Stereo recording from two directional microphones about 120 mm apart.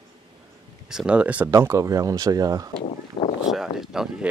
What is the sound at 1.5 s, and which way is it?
Speech, 25° right (ahead or behind).